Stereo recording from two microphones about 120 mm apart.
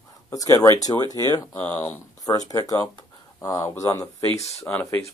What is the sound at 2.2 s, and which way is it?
Speech, 30° left (ahead or behind).